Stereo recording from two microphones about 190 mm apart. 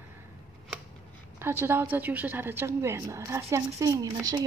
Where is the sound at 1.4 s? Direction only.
10° right (ahead or behind).